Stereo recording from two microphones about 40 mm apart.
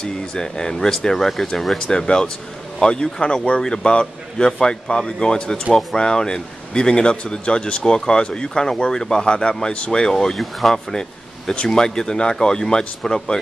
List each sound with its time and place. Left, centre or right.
0.0 s speech: centre
1.9 s speech: centre
10.1 s speech: centre